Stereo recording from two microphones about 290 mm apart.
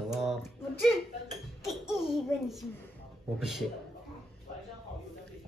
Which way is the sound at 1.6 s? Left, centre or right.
Centre.